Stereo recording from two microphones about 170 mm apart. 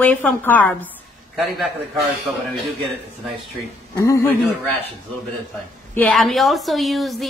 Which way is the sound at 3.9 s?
20° left (ahead or behind).